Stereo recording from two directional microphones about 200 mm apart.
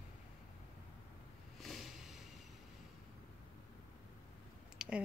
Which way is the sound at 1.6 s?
Centre (ahead or behind).